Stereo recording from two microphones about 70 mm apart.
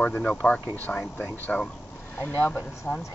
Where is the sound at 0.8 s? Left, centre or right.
Left.